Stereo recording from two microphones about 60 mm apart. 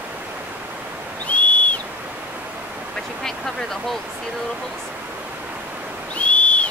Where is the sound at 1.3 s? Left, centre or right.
Left.